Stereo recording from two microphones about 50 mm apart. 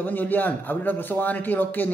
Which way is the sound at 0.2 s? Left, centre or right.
Left.